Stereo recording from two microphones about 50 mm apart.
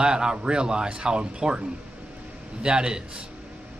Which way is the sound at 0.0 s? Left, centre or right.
Centre.